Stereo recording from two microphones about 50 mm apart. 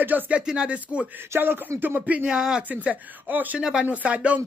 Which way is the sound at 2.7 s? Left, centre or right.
Right.